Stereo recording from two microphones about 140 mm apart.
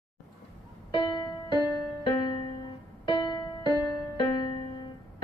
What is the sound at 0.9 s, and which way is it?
Music, 35° left (ahead or behind).